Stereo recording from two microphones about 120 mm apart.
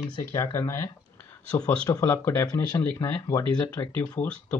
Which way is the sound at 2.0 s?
20° left (ahead or behind).